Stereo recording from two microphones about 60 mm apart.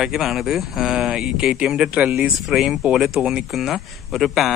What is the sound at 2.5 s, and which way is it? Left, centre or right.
Speech, centre.